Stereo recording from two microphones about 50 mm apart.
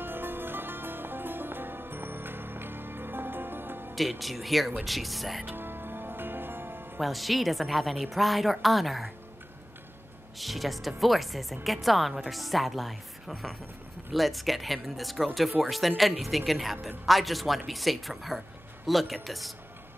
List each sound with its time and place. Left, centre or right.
0.0 s music: right
3.9 s a woman's voice: centre
5.4 s music: right
7.0 s a woman's voice: centre
10.4 s a woman's voice: centre
14.1 s a woman's voice: centre